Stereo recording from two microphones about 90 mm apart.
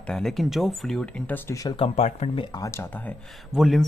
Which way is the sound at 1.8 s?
80° left.